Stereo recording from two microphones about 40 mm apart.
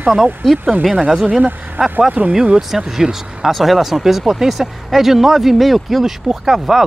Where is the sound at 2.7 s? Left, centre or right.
Centre.